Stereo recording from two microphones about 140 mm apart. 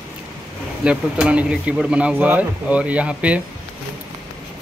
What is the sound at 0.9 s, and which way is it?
Speech, 10° right (ahead or behind).